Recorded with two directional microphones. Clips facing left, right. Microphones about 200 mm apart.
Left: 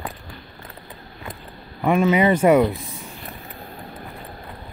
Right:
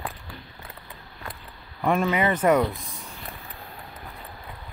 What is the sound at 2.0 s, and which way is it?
Speech, 25° left (ahead or behind).